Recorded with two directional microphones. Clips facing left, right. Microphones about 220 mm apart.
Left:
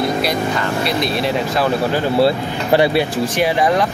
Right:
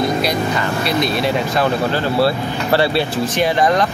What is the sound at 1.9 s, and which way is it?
Speech, 15° left (ahead or behind).